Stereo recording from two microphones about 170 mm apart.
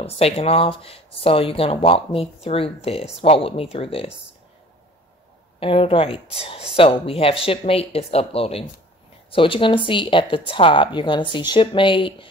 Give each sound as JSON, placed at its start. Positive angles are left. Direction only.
{"t": 0.0, "sound": "speech", "side_deg": 35}
{"t": 5.6, "sound": "speech", "side_deg": 35}